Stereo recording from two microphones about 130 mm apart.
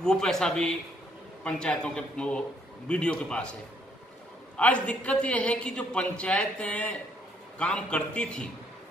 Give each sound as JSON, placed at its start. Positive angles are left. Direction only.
{"t": 0.0, "sound": "a man's voice", "side_deg": 5}
{"t": 4.6, "sound": "a man's voice", "side_deg": 10}